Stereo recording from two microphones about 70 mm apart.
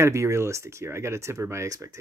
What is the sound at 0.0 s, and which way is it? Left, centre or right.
Speech, right.